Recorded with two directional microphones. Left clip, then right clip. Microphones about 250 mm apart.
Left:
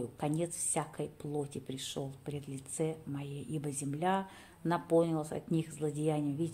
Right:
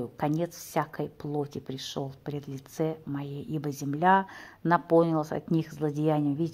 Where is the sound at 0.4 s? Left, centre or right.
Centre.